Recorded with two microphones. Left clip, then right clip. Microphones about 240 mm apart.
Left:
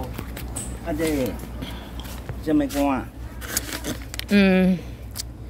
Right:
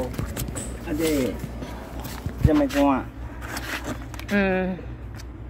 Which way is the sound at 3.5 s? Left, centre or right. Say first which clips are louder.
Left 1 dB; left.